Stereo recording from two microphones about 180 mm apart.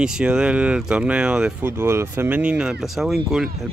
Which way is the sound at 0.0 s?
5° right (ahead or behind).